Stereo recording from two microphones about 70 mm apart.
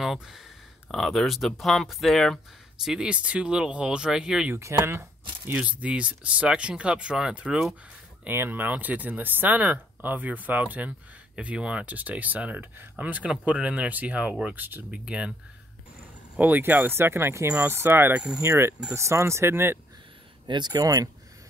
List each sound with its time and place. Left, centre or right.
0.0 s speech: centre
2.8 s speech: centre
4.6 s speech: right
5.6 s speech: centre
8.3 s speech: right
15.0 s speech: centre
16.3 s speech: right
18.4 s speech: right
20.5 s speech: right
20.8 s speech: right